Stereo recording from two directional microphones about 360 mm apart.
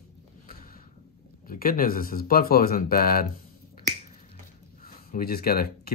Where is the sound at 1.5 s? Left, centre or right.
Left.